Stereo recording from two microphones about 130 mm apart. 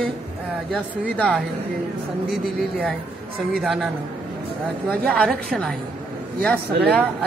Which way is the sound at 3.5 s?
Centre (ahead or behind).